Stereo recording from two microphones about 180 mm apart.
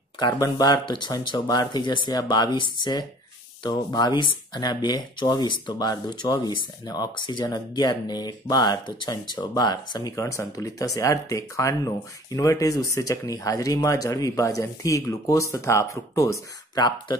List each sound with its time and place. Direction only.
0.3 s speech: 20° left (ahead or behind)